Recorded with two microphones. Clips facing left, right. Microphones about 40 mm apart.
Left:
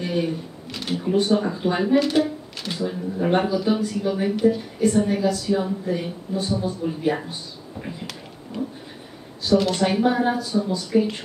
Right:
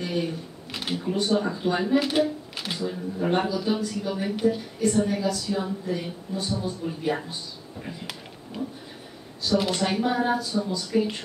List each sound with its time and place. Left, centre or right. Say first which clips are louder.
0.0 s a sound: left 3 dB; centre
0.7 s a sound: left 2 dB; centre
1.0 s a woman's voice: left 4 dB; centre
2.0 s speech: left 3 dB; centre
2.8 s a woman's voice: left 4 dB; centre
9.8 s a woman's voice: left 4 dB; centre